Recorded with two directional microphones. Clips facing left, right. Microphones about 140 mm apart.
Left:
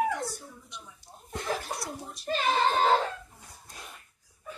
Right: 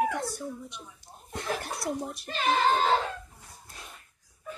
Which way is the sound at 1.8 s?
60° right (ahead or behind).